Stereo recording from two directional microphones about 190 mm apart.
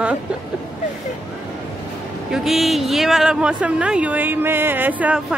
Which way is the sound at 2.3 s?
Centre (ahead or behind).